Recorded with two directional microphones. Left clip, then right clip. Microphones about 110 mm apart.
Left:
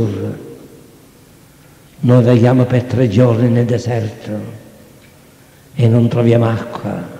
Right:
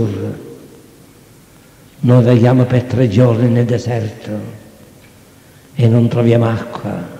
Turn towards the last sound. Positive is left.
turn(degrees=-25)  # may be behind; listen again after turning